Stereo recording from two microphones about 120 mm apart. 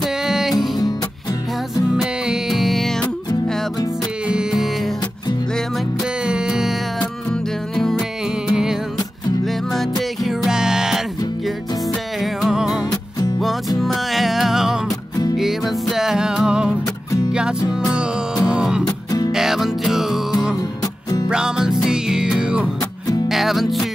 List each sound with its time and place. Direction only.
0.0 s music: 5° right (ahead or behind)
2.0 s music: 5° right (ahead or behind)
4.3 s music: 5° right (ahead or behind)
6.2 s music: 5° right (ahead or behind)
7.0 s music: 5° left (ahead or behind)
12.2 s music: centre (ahead or behind)
18.9 s music: 35° left (ahead or behind)
19.3 s music: 5° right (ahead or behind)
21.3 s music: 5° right (ahead or behind)